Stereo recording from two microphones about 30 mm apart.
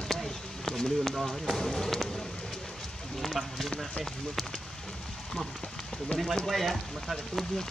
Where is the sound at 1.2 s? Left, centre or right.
Centre.